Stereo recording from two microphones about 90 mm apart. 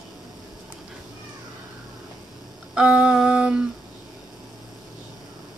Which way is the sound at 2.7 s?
10° right (ahead or behind).